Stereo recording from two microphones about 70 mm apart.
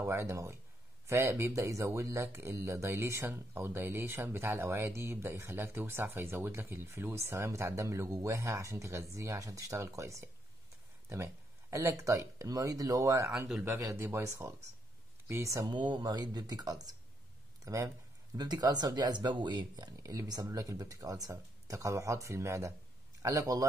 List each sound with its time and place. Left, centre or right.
0.0 s speech: right
13.7 s speech: right
15.7 s speech: right
17.6 s a sound: right
18.4 s speech: right
20.0 s speech: right
23.2 s speech: right